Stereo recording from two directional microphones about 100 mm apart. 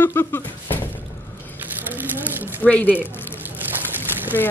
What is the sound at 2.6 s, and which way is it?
Speech, 15° left (ahead or behind).